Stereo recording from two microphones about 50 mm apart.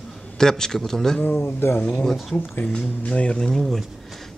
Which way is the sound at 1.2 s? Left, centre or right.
Left.